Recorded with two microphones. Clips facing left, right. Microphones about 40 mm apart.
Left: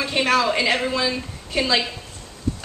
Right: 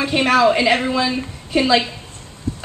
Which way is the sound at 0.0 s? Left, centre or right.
Centre.